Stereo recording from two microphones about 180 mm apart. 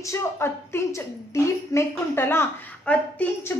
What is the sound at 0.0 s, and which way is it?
A woman's voice, 15° left (ahead or behind).